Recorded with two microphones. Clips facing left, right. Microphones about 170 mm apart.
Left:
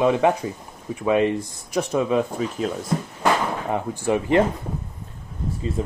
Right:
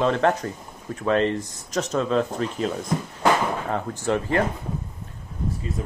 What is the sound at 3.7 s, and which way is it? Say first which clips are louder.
Speech: left 2 dB; 15° left (ahead or behind).